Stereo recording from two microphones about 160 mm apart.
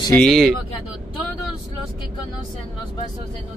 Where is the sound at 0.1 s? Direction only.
5° left (ahead or behind).